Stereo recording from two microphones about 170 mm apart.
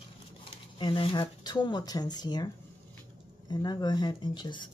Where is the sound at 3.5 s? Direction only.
25° left (ahead or behind).